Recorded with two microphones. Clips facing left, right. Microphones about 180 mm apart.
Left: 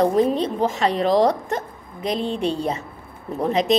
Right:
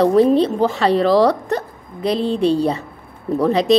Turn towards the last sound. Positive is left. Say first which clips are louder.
# right 5 dB
turn(degrees=-35)  # may be behind; listen again after turning